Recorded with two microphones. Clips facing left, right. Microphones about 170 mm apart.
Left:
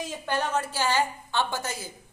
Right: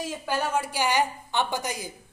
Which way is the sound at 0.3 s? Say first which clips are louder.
Even; 10° right (ahead or behind).